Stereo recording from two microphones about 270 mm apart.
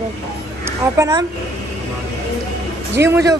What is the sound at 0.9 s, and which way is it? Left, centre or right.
Speech, centre.